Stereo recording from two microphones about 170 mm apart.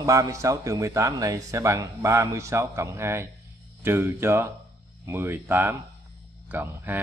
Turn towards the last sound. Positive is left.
turn(degrees=-10)  # may be behind; listen again after turning